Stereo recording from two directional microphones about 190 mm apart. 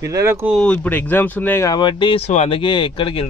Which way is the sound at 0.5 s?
5° left (ahead or behind).